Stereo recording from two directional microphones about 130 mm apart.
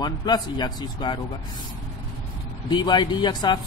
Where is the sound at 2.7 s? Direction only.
35° left (ahead or behind).